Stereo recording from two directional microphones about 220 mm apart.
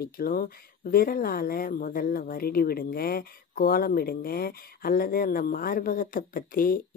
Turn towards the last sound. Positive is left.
turn(degrees=40)  # may be behind; listen again after turning